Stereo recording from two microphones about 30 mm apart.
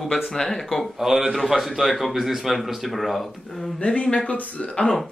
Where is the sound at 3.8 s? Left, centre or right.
Left.